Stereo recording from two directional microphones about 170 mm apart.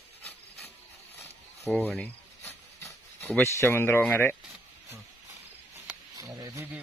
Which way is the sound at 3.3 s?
15° left (ahead or behind).